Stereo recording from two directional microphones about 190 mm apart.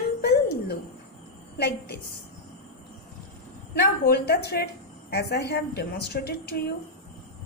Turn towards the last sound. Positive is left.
turn(degrees=55)  # may be behind; listen again after turning